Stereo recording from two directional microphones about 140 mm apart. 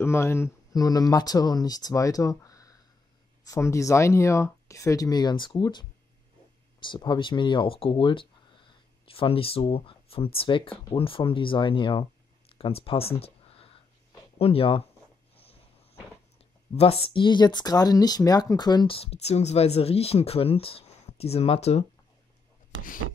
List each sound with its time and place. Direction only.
0.0 s speech: 20° left (ahead or behind); by 14.8 s 40° left (ahead or behind)
16.7 s speech: 45° left (ahead or behind)
18.9 s speech: 45° left (ahead or behind)